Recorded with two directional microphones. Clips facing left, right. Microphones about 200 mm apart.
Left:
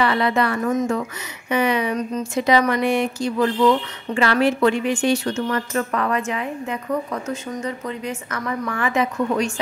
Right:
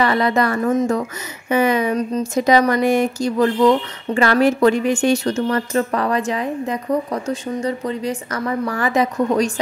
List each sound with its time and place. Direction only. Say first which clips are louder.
0.0 s a woman's voice: right 2 dB; 40° right (ahead or behind)